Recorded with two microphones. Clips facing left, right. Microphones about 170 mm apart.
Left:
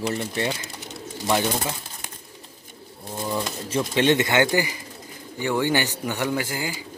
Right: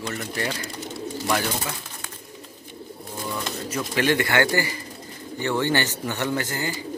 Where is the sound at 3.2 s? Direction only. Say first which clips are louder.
Left 4 dB; 25° left (ahead or behind).